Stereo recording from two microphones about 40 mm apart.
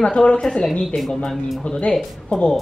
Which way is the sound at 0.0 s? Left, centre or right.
Left.